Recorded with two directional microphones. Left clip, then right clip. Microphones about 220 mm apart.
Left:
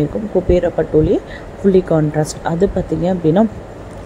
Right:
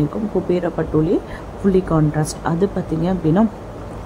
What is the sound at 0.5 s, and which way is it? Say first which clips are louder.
A woman's voice: left 7 dB; 10° left (ahead or behind).